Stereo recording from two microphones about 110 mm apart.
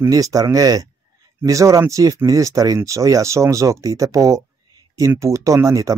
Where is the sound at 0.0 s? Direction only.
30° right (ahead or behind).